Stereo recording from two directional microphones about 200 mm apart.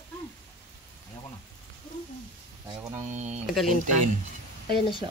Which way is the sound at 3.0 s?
40° right (ahead or behind).